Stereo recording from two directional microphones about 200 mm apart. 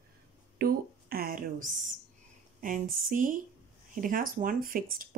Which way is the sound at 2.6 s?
40° right (ahead or behind).